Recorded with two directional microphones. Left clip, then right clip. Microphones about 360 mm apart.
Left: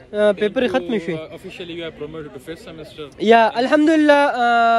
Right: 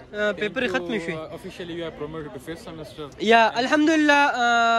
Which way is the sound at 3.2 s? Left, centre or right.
Centre.